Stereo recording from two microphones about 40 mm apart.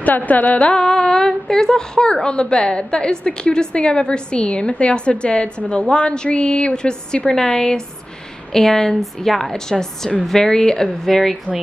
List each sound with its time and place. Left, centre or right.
0.0 s speech: left
0.7 s a woman's voice: centre